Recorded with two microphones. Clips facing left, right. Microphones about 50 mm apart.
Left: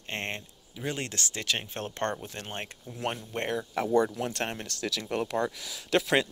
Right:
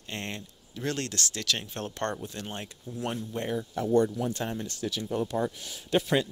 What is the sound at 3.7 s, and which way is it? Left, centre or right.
Speech, left.